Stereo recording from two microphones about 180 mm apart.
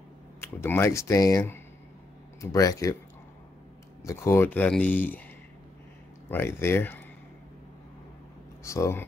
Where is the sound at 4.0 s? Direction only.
15° left (ahead or behind).